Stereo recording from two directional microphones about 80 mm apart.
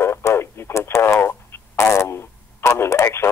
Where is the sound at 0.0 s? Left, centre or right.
Left.